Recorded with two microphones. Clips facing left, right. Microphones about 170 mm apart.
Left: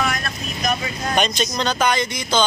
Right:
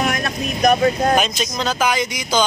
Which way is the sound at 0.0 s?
55° right (ahead or behind).